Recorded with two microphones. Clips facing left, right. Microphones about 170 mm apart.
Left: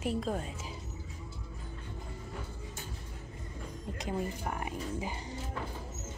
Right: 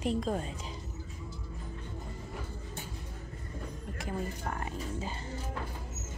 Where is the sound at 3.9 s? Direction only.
20° left (ahead or behind).